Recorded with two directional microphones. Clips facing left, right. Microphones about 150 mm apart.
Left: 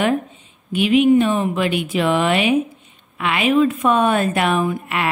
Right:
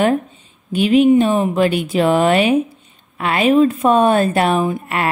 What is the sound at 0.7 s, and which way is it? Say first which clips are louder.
A woman's voice: right 2 dB; 35° right (ahead or behind).